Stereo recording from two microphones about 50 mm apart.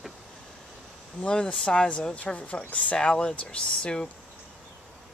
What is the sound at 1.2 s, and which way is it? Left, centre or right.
Speech, centre.